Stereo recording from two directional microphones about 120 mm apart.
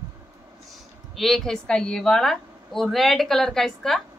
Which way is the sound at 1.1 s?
Centre (ahead or behind).